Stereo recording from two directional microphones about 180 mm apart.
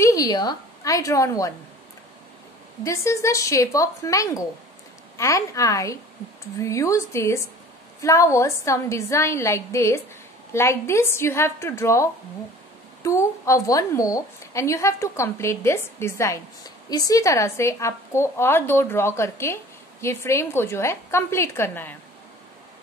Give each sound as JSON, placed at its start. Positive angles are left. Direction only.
{"t": 0.0, "sound": "a woman's voice", "side_deg": 20}
{"t": 2.8, "sound": "a woman's voice", "side_deg": 15}